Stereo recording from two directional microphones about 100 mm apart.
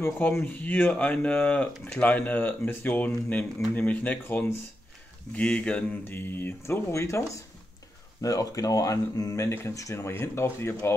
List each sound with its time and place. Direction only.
0.0 s speech: 25° left (ahead or behind)